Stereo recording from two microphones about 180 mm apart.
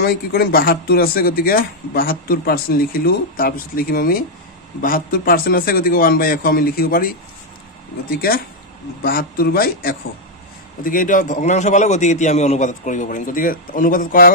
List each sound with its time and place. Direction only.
0.0 s a man's voice: 60° left (ahead or behind)